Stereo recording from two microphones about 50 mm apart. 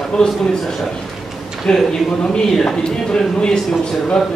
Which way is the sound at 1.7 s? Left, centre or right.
Centre.